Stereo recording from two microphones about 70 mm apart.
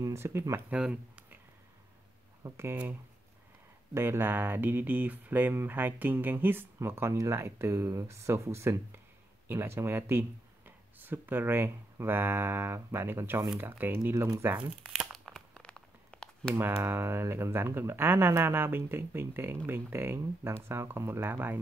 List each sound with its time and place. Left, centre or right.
0.0 s speech: right
0.7 s speech: centre
2.5 s speech: right
3.9 s speech: right
14.8 s crumpling: centre
15.1 s a sound: centre
16.5 s speech: right